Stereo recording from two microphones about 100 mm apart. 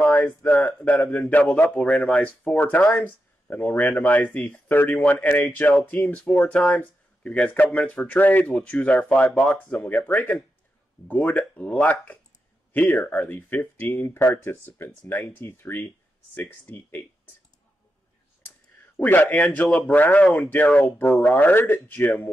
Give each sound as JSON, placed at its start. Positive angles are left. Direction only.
{"t": 0.0, "sound": "a sound", "side_deg": 15}
{"t": 0.5, "sound": "speech", "side_deg": 10}
{"t": 18.9, "sound": "speech", "side_deg": 20}